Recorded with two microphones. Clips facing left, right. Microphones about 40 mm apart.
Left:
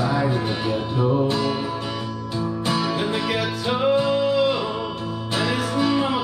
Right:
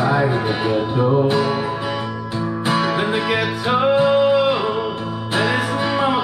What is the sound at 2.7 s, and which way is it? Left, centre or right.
Music, right.